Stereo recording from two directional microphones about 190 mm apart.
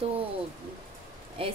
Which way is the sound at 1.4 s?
30° right (ahead or behind).